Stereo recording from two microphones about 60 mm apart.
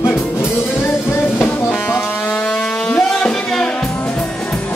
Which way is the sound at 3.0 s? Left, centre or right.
Centre.